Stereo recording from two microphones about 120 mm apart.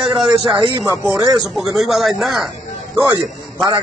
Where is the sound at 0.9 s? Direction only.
25° right (ahead or behind).